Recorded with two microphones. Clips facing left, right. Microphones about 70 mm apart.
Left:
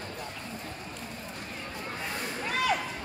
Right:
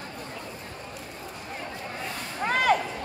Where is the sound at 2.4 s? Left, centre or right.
Right.